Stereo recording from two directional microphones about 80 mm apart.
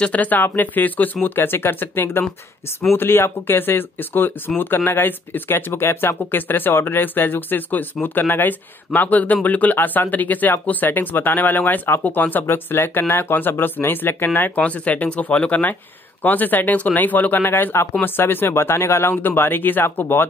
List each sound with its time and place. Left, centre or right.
0.0 s speech: centre